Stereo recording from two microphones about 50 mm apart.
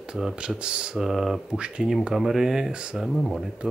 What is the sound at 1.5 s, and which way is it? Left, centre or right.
Speech, centre.